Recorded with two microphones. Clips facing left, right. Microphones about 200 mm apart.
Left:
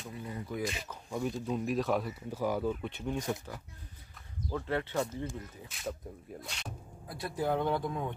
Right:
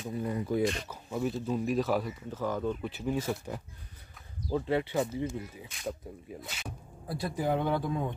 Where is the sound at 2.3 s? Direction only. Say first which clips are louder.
Even; 10° left (ahead or behind); by 3.5 s 5° right (ahead or behind).